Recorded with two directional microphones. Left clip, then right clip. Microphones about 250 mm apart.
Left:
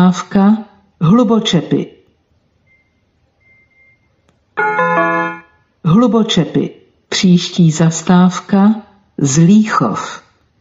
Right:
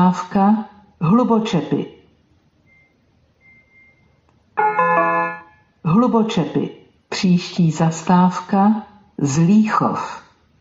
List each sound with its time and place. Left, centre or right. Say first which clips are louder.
0.0 s speech: left 2 dB; left
4.6 s speech: left 3 dB; left